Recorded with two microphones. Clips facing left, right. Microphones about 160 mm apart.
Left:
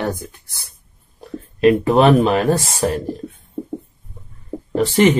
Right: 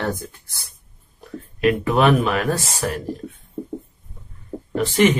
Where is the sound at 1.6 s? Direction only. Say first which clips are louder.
Left 5 dB; 30° left (ahead or behind).